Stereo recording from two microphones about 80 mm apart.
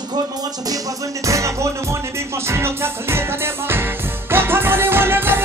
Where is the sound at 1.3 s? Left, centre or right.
Right.